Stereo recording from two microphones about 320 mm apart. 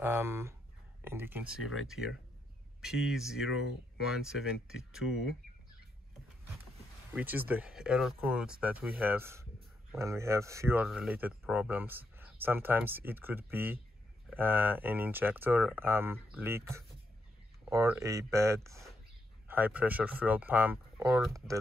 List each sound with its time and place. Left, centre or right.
0.0 s speech: centre
1.6 s speech: left
1.9 s speech: centre
7.2 s speech: centre